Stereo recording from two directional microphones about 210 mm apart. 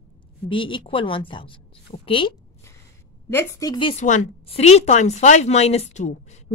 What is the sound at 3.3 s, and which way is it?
A woman's voice, 15° left (ahead or behind).